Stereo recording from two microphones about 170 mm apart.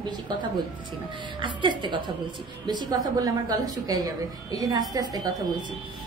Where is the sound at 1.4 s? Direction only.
30° right (ahead or behind).